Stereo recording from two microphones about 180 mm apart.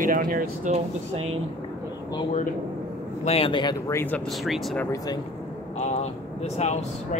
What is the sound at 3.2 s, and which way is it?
Speech, 35° left (ahead or behind).